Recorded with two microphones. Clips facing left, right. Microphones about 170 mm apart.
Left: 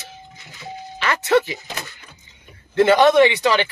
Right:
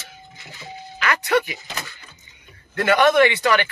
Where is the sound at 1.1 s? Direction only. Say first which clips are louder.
Left 3 dB; 25° left (ahead or behind).